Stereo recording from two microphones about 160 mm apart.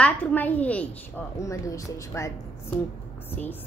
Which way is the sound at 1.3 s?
20° left (ahead or behind).